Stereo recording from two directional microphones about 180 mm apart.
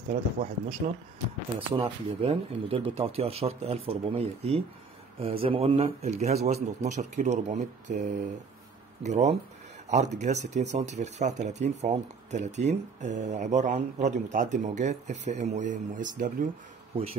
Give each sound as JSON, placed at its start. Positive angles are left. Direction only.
{"t": 0.1, "sound": "speech", "side_deg": -40}
{"t": 1.7, "sound": "speech", "side_deg": -30}
{"t": 9.0, "sound": "speech", "side_deg": -40}
{"t": 16.9, "sound": "speech", "side_deg": -30}